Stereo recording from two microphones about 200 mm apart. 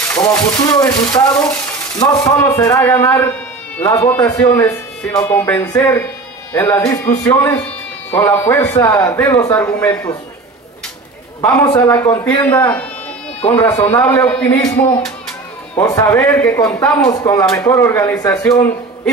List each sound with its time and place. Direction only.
0.1 s speech: 15° left (ahead or behind)
11.4 s speech: 15° left (ahead or behind)
15.8 s speech: 15° left (ahead or behind)